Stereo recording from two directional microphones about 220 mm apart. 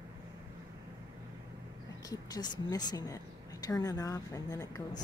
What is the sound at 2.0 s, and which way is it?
A woman's voice, 20° left (ahead or behind).